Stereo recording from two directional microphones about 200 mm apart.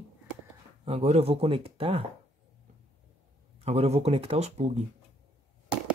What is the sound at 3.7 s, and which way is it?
Speech, 30° right (ahead or behind).